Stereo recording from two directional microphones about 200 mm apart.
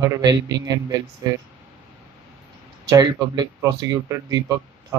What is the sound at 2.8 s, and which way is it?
Speech, 20° right (ahead or behind).